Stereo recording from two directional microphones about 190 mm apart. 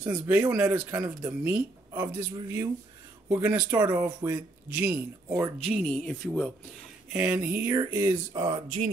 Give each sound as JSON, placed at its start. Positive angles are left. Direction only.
{"t": 0.0, "sound": "a man's voice", "side_deg": -15}
{"t": 5.6, "sound": "speech", "side_deg": 0}
{"t": 7.1, "sound": "speech", "side_deg": -10}
{"t": 8.4, "sound": "a man's voice", "side_deg": -30}